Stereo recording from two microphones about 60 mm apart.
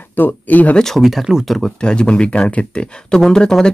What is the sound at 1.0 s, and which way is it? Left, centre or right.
Speech, centre.